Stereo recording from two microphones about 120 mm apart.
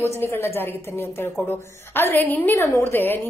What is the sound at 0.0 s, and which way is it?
A woman's voice, 20° left (ahead or behind).